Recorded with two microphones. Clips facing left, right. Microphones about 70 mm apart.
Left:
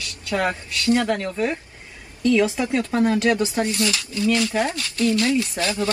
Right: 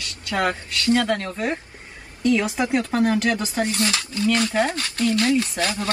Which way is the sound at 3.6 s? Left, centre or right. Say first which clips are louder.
Even; right.